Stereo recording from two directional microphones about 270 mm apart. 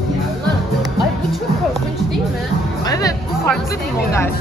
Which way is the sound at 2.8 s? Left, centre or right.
Centre.